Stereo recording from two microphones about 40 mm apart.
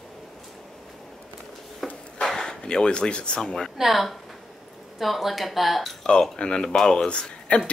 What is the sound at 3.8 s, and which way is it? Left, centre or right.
Speech, centre.